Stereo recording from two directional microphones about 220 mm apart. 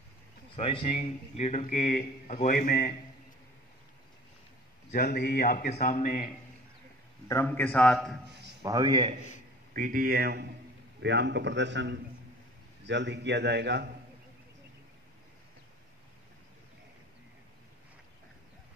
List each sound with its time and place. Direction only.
0.6 s a man's voice: 25° left (ahead or behind)
4.9 s a man's voice: 45° left (ahead or behind)
7.2 s a man's voice: 10° left (ahead or behind)
8.3 s a sound: 50° right (ahead or behind)
8.6 s a man's voice: 20° right (ahead or behind)
9.8 s a man's voice: 40° right (ahead or behind)